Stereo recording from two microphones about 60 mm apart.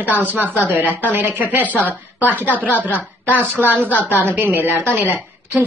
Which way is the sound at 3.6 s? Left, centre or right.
Right.